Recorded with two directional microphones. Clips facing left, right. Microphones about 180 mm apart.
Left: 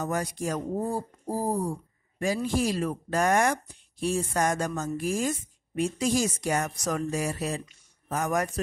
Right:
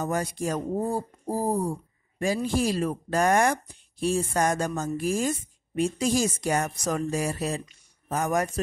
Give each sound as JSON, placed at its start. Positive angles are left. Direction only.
{"t": 0.0, "sound": "speech", "side_deg": -30}